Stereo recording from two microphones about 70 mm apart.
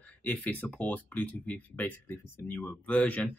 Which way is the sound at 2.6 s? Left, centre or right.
Left.